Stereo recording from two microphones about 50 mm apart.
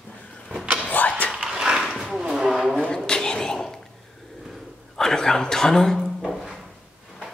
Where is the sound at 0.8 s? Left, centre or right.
Left.